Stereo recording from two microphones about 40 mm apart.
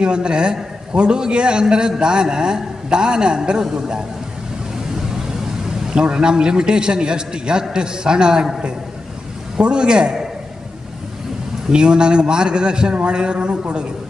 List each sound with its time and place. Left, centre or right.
0.0 s a man's voice: right
5.9 s a man's voice: centre
11.7 s a man's voice: right